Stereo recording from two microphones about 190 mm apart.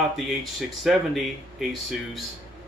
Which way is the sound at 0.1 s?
Centre (ahead or behind).